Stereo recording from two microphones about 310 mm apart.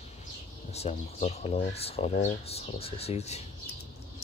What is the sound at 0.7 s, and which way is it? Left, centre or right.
Speech, centre.